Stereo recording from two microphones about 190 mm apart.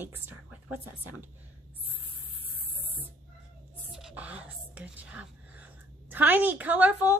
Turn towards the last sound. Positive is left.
turn(degrees=-10)  # may be behind; listen again after turning